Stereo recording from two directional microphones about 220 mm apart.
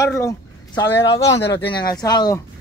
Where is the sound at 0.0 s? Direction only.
15° left (ahead or behind).